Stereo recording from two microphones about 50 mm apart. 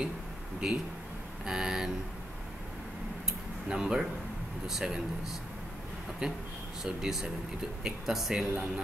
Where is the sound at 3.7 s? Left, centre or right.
Centre.